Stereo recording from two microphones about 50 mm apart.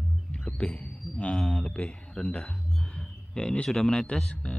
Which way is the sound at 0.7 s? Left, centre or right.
Left.